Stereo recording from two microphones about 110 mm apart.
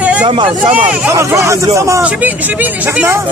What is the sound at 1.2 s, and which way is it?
Speech, 25° right (ahead or behind).